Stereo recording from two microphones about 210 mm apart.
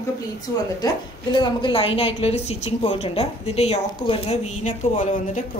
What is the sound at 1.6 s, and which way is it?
A woman's voice, 25° left (ahead or behind).